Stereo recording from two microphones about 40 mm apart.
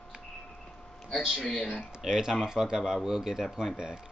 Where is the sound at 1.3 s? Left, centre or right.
Left.